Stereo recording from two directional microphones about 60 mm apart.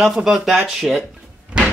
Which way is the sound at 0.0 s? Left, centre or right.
Centre.